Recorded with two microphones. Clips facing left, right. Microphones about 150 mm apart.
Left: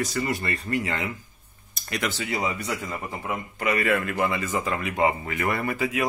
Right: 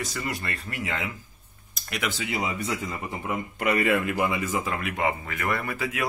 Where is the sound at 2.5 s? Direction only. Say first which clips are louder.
Right 1 dB; 25° right (ahead or behind).